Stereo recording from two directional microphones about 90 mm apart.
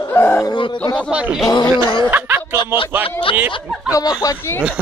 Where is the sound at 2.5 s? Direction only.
70° left (ahead or behind).